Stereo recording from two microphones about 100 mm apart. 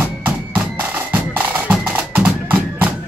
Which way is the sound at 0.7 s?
20° right (ahead or behind).